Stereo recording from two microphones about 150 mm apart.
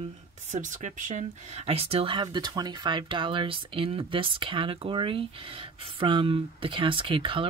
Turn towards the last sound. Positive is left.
turn(degrees=-35)  # may be behind; listen again after turning